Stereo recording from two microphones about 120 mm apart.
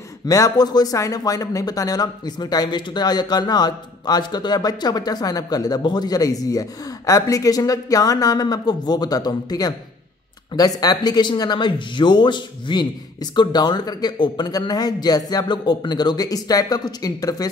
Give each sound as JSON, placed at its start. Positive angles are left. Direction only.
{"t": 0.3, "sound": "speech", "side_deg": 30}